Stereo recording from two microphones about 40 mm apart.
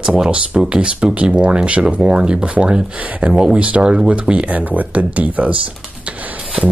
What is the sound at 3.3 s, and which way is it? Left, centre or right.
Speech, right.